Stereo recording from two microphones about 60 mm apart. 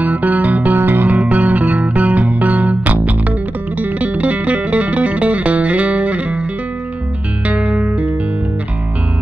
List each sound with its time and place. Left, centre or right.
0.0 s music: right
7.4 s music: right